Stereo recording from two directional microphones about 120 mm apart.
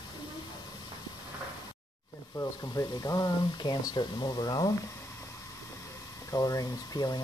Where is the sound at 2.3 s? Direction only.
35° left (ahead or behind).